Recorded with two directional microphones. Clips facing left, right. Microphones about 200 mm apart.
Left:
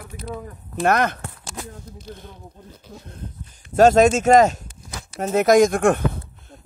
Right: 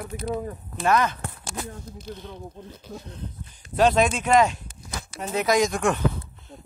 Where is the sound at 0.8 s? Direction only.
60° left (ahead or behind).